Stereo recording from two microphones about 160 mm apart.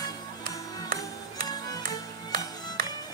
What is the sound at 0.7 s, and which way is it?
Music, 25° left (ahead or behind).